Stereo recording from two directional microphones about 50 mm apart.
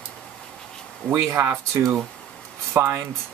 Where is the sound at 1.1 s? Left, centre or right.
Right.